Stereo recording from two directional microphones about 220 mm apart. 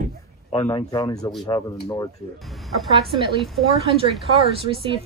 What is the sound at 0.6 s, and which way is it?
Speech, 20° left (ahead or behind).